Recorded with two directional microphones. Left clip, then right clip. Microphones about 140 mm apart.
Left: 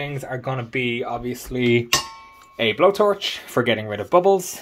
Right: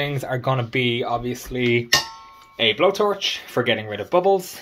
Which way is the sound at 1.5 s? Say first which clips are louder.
Even; 55° left (ahead or behind).